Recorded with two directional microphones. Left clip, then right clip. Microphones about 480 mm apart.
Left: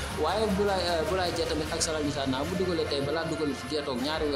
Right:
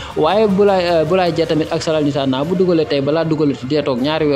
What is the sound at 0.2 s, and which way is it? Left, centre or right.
Speech, left.